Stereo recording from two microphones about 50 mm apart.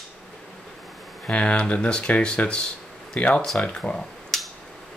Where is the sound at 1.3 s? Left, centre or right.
Left.